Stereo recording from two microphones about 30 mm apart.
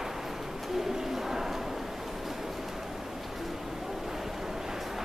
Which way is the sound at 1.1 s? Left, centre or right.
Centre.